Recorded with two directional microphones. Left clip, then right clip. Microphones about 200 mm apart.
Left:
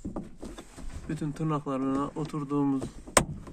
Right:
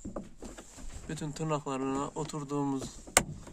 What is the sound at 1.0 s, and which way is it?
Speech, 70° right (ahead or behind).